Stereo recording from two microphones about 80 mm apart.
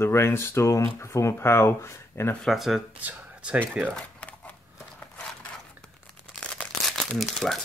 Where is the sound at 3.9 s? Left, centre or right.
Centre.